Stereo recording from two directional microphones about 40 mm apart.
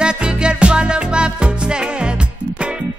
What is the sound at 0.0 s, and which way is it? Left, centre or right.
Music, right.